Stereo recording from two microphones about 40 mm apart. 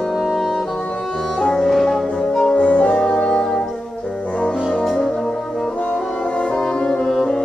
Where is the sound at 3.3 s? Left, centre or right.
Centre.